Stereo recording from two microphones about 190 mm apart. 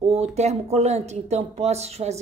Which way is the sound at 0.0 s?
35° right (ahead or behind).